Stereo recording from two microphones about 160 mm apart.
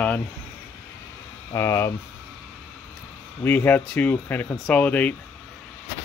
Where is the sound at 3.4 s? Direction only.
15° left (ahead or behind).